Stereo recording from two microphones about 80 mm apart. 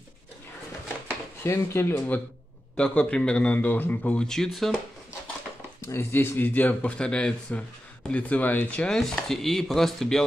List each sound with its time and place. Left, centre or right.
1.0 s speech: left
2.8 s speech: centre
5.8 s speech: left; by 10.2 s centre